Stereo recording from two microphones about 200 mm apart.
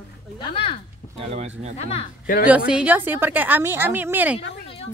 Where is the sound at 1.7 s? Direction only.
30° left (ahead or behind).